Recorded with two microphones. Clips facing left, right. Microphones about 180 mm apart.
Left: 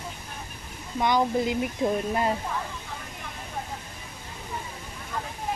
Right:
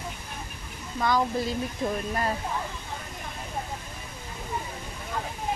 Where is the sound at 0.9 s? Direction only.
20° left (ahead or behind).